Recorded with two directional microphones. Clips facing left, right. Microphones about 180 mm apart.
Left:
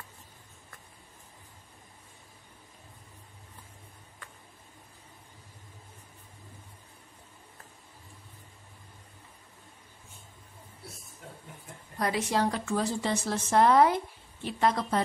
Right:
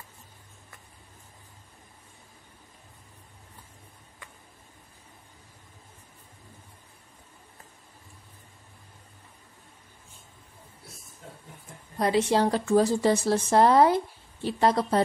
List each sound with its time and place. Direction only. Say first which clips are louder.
12.0 s speech: right 5 dB; 30° right (ahead or behind)